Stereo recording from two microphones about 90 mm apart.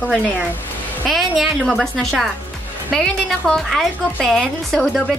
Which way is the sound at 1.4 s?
Centre (ahead or behind).